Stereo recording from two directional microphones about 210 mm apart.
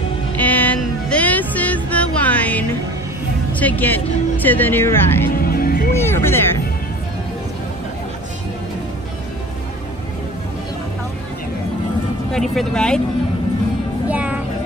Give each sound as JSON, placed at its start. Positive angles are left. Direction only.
{"t": 0.4, "sound": "music", "side_deg": 10}
{"t": 3.5, "sound": "speech", "side_deg": 5}
{"t": 5.4, "sound": "music", "side_deg": 45}
{"t": 5.9, "sound": "music", "side_deg": 10}
{"t": 12.3, "sound": "speech", "side_deg": 0}
{"t": 14.0, "sound": "music", "side_deg": -5}